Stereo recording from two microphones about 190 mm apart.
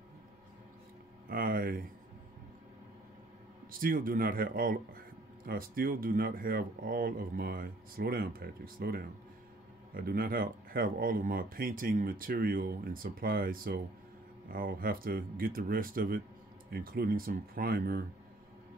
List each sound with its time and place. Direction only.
1.3 s speech: 50° right (ahead or behind)
3.8 s speech: 50° right (ahead or behind)